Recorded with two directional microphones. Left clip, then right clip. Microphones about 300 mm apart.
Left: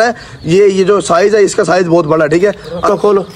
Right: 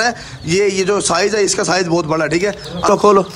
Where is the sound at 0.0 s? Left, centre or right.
Centre.